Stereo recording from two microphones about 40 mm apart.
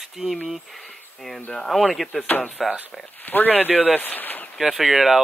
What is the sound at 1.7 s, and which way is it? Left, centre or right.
Speech, centre.